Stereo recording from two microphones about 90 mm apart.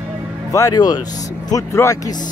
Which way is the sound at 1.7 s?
30° left (ahead or behind).